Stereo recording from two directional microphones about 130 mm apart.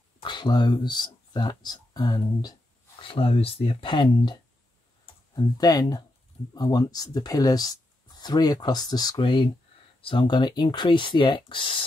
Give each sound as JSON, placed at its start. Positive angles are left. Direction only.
{"t": 0.2, "sound": "speech", "side_deg": 35}
{"t": 3.0, "sound": "speech", "side_deg": 45}